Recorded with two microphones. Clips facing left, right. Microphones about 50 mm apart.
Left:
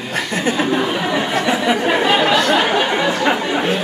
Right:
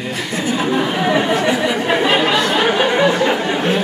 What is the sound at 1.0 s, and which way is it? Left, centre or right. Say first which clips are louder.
Speech: right 4 dB; centre.